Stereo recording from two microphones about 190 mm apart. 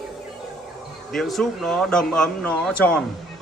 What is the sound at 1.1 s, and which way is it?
Speech, centre (ahead or behind).